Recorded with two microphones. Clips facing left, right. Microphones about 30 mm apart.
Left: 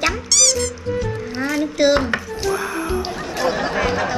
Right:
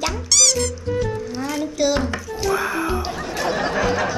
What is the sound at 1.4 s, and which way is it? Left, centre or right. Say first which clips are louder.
Speech: left 5 dB; left.